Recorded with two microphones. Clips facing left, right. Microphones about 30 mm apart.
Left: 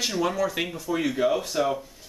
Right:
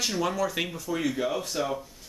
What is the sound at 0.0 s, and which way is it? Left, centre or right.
Speech, centre.